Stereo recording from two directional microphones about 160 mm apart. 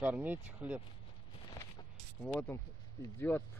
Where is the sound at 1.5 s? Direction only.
25° left (ahead or behind).